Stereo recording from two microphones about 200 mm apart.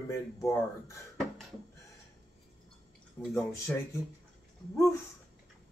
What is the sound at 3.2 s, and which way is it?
Speech, 15° left (ahead or behind).